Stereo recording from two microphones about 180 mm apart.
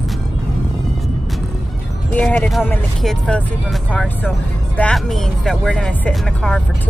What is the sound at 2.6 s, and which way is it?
Speech, 5° left (ahead or behind).